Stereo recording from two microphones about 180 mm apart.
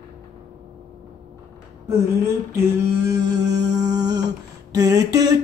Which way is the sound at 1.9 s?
15° right (ahead or behind).